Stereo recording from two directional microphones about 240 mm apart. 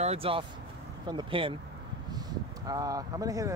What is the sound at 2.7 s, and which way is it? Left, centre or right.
Speech, centre.